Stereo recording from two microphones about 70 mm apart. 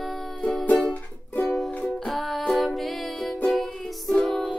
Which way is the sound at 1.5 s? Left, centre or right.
Centre.